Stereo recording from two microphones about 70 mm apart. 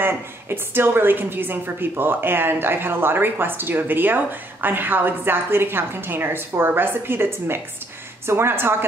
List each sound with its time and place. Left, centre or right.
0.0 s a woman's voice: right